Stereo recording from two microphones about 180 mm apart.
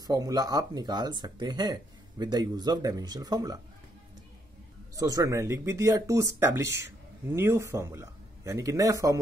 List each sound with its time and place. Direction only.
0.0 s speech: 20° right (ahead or behind)
4.9 s speech: 20° right (ahead or behind)